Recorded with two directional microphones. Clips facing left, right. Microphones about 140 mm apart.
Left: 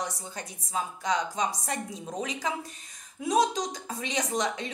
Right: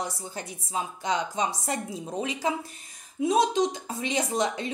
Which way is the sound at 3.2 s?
25° right (ahead or behind).